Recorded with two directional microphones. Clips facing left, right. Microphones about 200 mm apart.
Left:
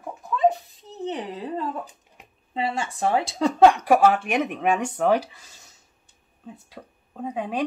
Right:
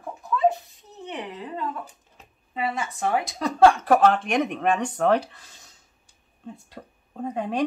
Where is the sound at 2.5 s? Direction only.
30° left (ahead or behind).